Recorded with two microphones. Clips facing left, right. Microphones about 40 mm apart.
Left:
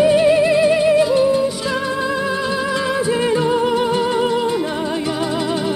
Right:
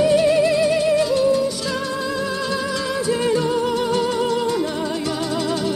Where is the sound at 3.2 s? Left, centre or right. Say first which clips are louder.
Left 2 dB; left.